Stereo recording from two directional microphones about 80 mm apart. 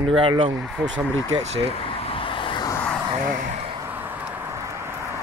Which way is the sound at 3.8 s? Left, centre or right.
Right.